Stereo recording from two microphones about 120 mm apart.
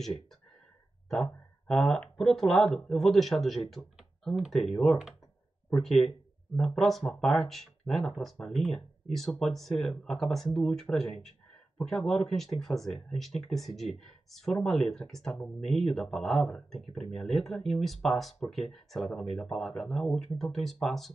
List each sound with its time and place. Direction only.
1.0 s speech: 5° left (ahead or behind)